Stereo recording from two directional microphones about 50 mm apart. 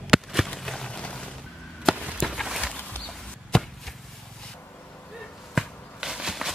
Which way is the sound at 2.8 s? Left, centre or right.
Left.